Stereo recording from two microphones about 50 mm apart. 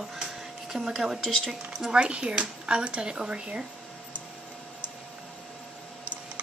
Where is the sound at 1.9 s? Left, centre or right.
Right.